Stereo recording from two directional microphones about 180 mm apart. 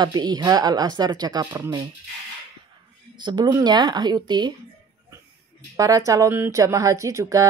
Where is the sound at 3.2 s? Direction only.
20° right (ahead or behind).